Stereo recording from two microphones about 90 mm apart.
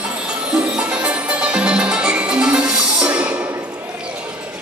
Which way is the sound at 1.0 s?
10° right (ahead or behind).